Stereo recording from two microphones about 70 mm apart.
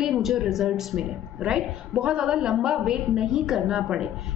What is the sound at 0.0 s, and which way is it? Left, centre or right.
A woman's voice, centre.